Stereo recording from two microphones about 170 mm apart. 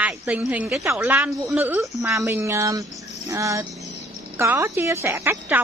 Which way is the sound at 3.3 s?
20° right (ahead or behind).